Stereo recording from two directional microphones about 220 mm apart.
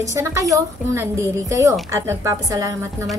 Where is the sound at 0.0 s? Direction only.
15° right (ahead or behind).